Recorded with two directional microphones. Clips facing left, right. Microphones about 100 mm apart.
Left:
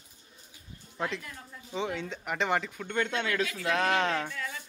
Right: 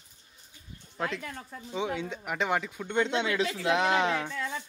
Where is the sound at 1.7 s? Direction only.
10° right (ahead or behind).